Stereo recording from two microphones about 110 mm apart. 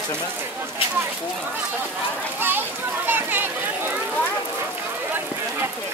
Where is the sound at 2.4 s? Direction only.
20° right (ahead or behind).